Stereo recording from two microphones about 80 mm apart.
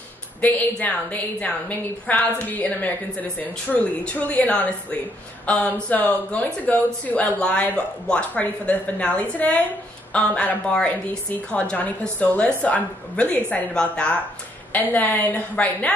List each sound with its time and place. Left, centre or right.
0.4 s a woman's voice: centre